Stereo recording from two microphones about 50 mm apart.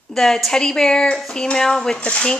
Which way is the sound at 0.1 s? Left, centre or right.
Centre.